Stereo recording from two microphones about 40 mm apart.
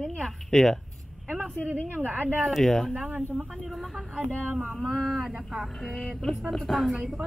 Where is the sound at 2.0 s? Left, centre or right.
Right.